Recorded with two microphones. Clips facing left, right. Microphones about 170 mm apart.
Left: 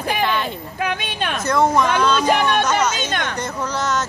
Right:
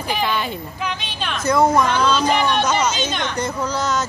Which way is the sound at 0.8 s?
55° left (ahead or behind).